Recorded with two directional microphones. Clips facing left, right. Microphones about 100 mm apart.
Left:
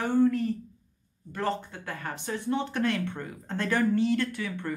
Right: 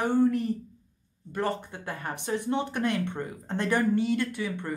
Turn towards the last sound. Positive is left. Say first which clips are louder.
# right 1 dB
turn(degrees=-20)  # may be behind; listen again after turning